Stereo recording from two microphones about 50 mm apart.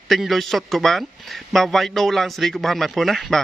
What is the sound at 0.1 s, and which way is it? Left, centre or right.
A man's voice, centre.